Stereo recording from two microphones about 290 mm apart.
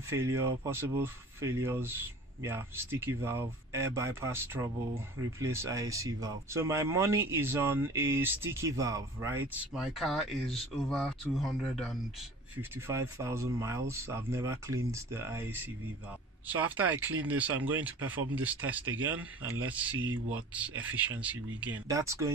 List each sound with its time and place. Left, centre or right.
0.1 s speech: centre